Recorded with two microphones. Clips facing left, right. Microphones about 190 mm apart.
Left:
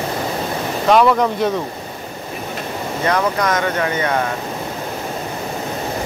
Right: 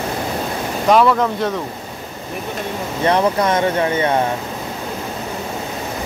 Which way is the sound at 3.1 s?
30° right (ahead or behind).